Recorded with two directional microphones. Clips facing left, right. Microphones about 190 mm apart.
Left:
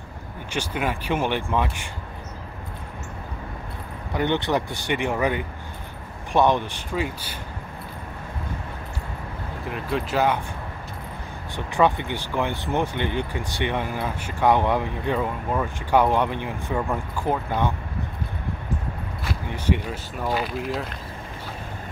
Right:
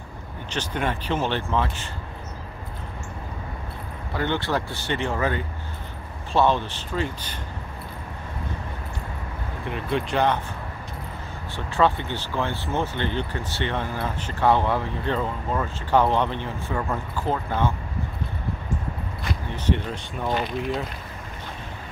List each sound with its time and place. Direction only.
0.5 s speech: 10° left (ahead or behind)
4.1 s speech: 15° left (ahead or behind)
9.7 s speech: centre (ahead or behind)
11.5 s speech: 15° left (ahead or behind)
19.2 s speech: 10° left (ahead or behind)